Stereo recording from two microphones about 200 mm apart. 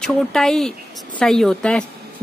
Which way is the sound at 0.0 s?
Centre (ahead or behind).